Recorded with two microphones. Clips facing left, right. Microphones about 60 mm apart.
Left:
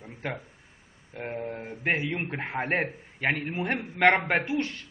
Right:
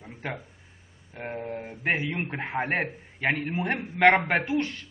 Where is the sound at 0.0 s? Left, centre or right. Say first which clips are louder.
Even; centre.